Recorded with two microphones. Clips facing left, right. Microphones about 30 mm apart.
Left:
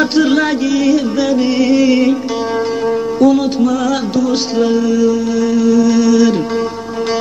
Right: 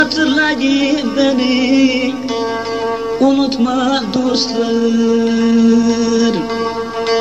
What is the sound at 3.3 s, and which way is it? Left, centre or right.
Music, right.